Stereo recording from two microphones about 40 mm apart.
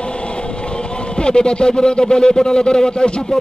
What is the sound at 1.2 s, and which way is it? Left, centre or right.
A man's voice, left.